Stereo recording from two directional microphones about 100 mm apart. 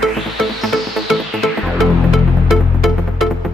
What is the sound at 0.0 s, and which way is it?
Music, centre (ahead or behind).